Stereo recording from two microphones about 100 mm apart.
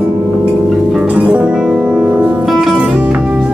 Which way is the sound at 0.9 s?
10° right (ahead or behind).